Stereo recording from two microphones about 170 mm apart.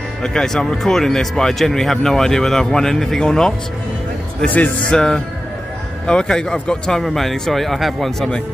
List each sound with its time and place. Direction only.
0.2 s speech: 5° left (ahead or behind)